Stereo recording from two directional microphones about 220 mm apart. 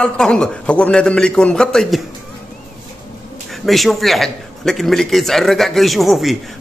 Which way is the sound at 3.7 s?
Centre (ahead or behind).